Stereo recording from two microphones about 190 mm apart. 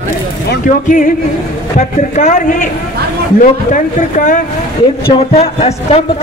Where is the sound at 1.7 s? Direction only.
40° left (ahead or behind).